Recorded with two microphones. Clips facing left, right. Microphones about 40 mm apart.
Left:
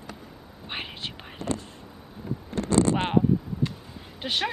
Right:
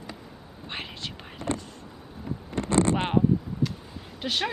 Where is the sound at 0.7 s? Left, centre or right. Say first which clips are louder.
Left 1 dB; centre.